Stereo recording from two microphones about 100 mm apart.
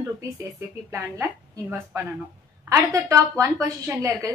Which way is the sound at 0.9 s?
30° right (ahead or behind).